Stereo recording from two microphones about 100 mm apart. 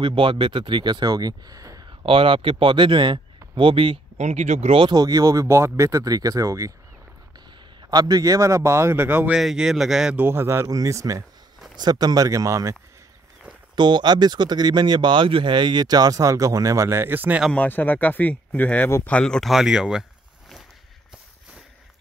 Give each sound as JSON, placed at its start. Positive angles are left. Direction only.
{"t": 0.0, "sound": "speech", "side_deg": -60}
{"t": 2.0, "sound": "speech", "side_deg": -65}
{"t": 4.8, "sound": "speech", "side_deg": -40}
{"t": 7.9, "sound": "speech", "side_deg": -40}
{"t": 9.3, "sound": "speech", "side_deg": -5}
{"t": 10.1, "sound": "speech", "side_deg": -25}
{"t": 11.7, "sound": "speech", "side_deg": -45}
{"t": 13.7, "sound": "speech", "side_deg": -50}
{"t": 17.5, "sound": "speech", "side_deg": 15}
{"t": 19.5, "sound": "a sound", "side_deg": -5}